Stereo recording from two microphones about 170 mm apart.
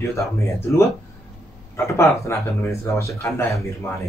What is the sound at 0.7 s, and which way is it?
Speech, 15° left (ahead or behind).